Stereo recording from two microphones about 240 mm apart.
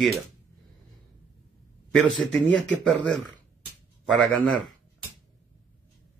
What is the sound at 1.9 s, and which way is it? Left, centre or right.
Speech, centre.